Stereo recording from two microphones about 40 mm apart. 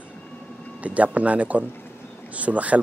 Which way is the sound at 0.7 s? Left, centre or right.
Right.